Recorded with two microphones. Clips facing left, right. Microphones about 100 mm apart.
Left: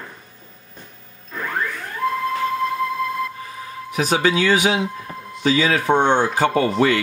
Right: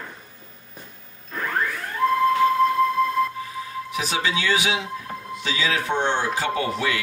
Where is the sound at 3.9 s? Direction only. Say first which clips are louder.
Left 7 dB; 45° left (ahead or behind).